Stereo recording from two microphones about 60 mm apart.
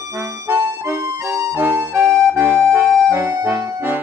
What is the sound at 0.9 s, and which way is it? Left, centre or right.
Music, right.